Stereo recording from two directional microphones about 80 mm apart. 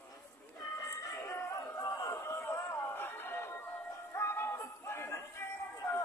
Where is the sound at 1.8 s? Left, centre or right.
Left.